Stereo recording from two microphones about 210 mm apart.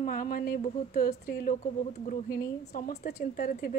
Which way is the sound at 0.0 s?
40° left (ahead or behind).